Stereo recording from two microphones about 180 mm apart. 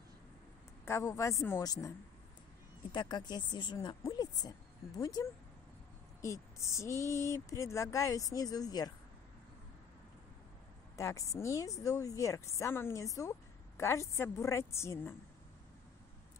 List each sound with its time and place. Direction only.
0.8 s a woman's voice: 15° left (ahead or behind)
11.0 s a woman's voice: 15° left (ahead or behind)